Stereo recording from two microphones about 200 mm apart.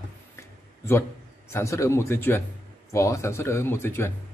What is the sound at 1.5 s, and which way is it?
Speech, 15° left (ahead or behind).